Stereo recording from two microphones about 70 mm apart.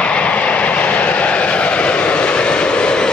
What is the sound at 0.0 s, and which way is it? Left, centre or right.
Vehicle, centre.